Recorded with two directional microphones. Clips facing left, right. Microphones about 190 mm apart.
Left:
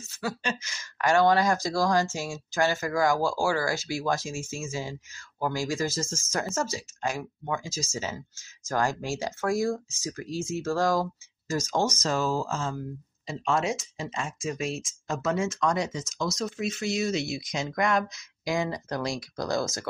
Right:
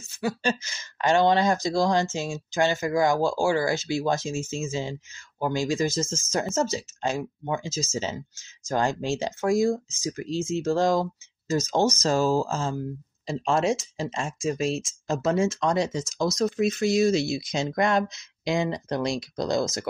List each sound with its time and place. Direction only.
0.4 s speech: 30° right (ahead or behind)